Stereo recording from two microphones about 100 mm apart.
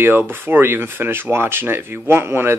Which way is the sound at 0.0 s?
20° right (ahead or behind).